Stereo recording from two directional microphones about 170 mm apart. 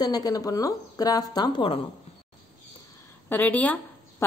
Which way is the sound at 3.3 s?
10° left (ahead or behind).